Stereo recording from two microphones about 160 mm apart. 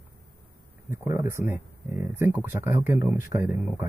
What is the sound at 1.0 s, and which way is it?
Speech, 50° left (ahead or behind).